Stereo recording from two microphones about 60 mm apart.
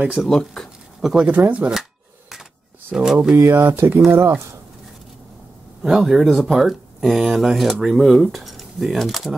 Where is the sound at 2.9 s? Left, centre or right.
Centre.